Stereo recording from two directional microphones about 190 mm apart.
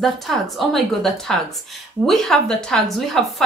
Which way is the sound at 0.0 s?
Centre (ahead or behind).